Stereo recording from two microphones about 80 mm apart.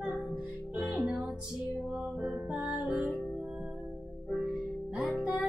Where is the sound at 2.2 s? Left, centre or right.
Centre.